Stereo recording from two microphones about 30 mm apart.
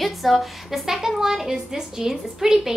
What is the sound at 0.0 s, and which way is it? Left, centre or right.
A woman's voice, centre.